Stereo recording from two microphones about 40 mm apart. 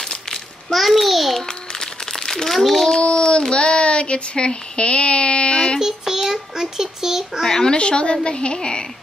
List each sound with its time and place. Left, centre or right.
0.1 s a sound: centre
0.7 s a sound: centre
1.4 s crumpling: centre
3.0 s child singing: left
5.8 s child singing: centre
7.4 s speech: centre
7.7 s a woman's voice: left